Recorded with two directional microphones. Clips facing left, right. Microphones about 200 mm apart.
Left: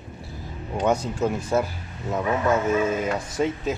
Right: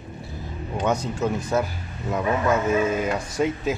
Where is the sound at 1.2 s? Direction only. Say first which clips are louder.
Even; 5° left (ahead or behind).